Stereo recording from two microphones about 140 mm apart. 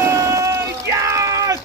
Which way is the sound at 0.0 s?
20° right (ahead or behind).